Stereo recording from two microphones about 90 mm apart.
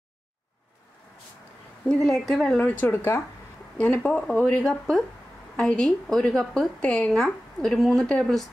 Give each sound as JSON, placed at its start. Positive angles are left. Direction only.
{"t": 1.9, "sound": "speech", "side_deg": 5}
{"t": 2.6, "sound": "speech", "side_deg": 20}
{"t": 3.7, "sound": "speech", "side_deg": 15}